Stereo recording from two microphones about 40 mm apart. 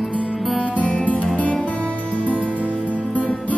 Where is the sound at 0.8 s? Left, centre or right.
Left.